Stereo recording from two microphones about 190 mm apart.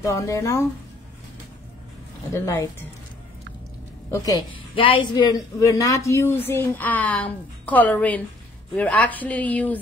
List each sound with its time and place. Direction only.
0.0 s a woman's voice: 15° left (ahead or behind)
2.3 s a woman's voice: 15° left (ahead or behind)
4.1 s a woman's voice: 20° left (ahead or behind)